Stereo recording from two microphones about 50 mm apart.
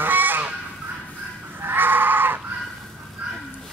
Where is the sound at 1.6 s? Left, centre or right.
Right.